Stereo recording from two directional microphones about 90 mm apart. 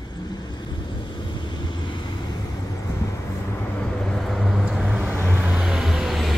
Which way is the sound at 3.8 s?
10° left (ahead or behind).